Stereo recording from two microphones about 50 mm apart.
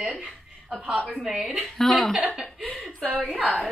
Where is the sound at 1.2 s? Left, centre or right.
Centre.